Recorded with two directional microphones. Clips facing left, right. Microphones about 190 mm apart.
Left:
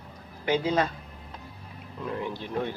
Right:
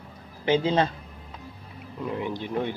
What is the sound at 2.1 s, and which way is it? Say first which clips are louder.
Speech: right 2 dB; 15° right (ahead or behind).